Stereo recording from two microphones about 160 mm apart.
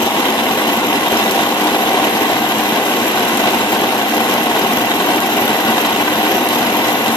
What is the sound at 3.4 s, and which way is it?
Engine, 25° left (ahead or behind).